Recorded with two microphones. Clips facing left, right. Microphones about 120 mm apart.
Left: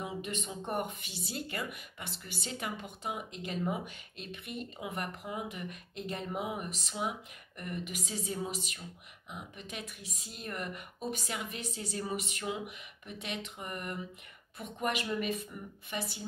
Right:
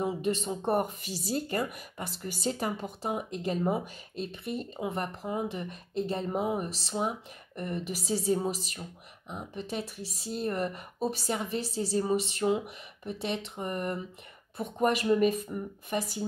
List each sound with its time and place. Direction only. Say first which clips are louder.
0.0 s speech: right 9 dB; 35° right (ahead or behind)